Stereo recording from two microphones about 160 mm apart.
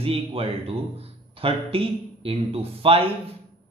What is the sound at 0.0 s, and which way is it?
Speech, 35° right (ahead or behind).